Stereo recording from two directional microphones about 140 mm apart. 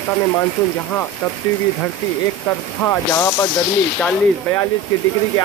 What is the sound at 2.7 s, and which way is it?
Speech, 20° left (ahead or behind).